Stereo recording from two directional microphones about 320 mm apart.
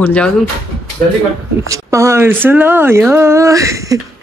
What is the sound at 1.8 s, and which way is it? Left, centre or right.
Speech, centre.